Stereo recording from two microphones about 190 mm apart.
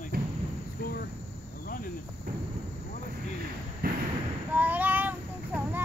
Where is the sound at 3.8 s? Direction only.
50° right (ahead or behind).